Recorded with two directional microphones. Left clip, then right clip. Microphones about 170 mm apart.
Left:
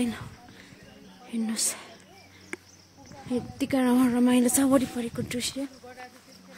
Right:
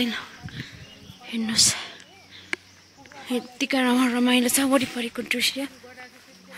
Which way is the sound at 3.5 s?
15° left (ahead or behind).